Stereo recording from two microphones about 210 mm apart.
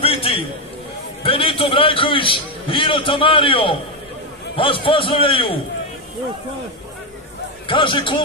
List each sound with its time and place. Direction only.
0.0 s a sound: 25° left (ahead or behind)
1.2 s a man's voice: 25° left (ahead or behind)
7.6 s a man's voice: 25° left (ahead or behind)